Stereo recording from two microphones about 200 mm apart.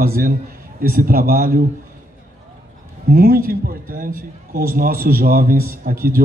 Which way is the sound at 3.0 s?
50° right (ahead or behind).